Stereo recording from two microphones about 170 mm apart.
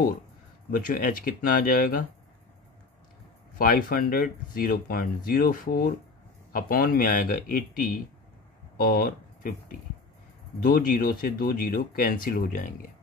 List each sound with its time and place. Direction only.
0.7 s speech: 55° left (ahead or behind)
3.5 s speech: 55° left (ahead or behind)
10.6 s speech: 55° left (ahead or behind)